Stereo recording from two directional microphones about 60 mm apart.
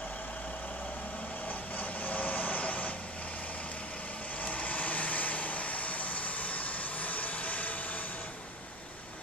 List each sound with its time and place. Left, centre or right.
1.5 s vehicle: left
4.4 s vehicle: left